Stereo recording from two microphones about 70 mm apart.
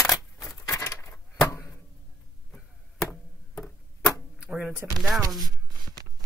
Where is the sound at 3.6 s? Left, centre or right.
Centre.